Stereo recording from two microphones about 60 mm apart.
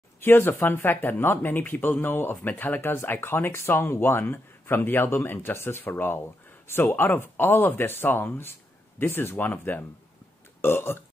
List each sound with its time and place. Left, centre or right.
0.2 s speech: left